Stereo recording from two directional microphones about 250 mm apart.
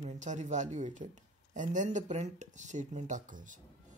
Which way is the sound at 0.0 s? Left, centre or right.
Right.